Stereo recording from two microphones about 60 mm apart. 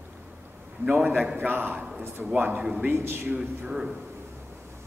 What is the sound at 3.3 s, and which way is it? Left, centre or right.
Speech, right.